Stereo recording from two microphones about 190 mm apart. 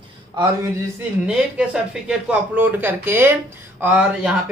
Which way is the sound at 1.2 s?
5° right (ahead or behind).